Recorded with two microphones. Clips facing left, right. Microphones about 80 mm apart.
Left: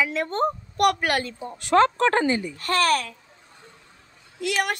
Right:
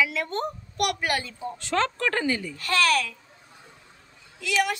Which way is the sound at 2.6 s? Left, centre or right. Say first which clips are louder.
Even; left.